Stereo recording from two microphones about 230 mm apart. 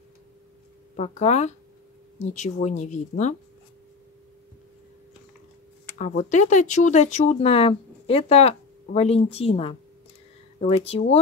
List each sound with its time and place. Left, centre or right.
0.9 s speech: left
5.9 s speech: left